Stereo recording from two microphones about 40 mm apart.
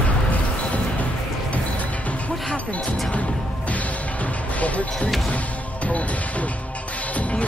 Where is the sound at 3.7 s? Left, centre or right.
Left.